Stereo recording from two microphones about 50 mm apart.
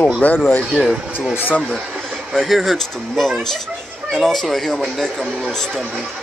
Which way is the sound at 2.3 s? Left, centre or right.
Centre.